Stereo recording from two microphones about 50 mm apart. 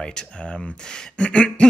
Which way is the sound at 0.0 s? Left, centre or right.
Centre.